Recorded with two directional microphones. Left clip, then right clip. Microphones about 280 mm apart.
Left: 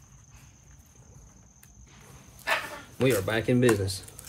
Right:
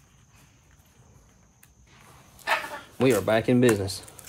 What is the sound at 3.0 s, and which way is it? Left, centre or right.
Speech, right.